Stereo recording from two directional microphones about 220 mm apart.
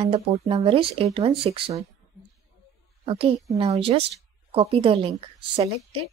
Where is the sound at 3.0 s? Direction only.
25° right (ahead or behind).